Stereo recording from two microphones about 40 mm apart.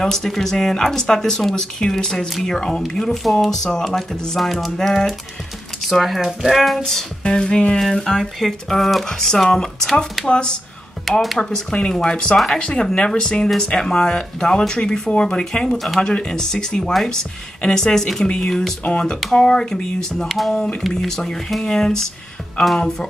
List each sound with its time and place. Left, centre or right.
0.0 s speech: centre
7.2 s speech: left
8.2 s speech: centre; by 10.5 s left
11.2 s speech: centre
12.0 s speech: left
18.2 s speech: left
18.5 s speech: centre
18.9 s speech: left
20.2 s speech: centre
20.5 s speech: centre